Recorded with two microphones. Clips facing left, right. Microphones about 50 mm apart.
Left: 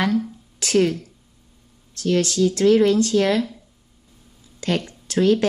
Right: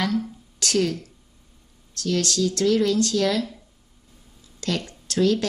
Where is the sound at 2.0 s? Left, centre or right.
Left.